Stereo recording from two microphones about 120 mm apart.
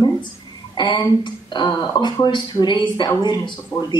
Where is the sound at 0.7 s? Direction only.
40° left (ahead or behind).